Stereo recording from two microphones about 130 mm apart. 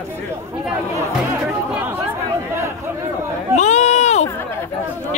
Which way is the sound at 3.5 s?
60° left (ahead or behind).